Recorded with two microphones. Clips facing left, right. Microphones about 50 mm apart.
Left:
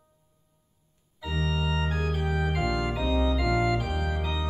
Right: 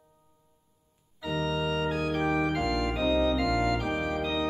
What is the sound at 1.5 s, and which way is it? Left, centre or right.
Organ, centre.